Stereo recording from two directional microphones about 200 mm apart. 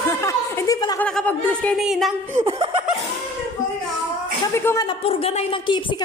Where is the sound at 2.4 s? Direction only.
30° right (ahead or behind).